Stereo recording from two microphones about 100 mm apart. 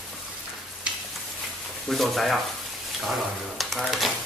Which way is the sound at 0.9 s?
10° right (ahead or behind).